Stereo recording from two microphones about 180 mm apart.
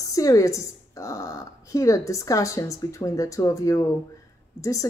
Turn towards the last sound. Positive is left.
turn(degrees=15)  # may be behind; listen again after turning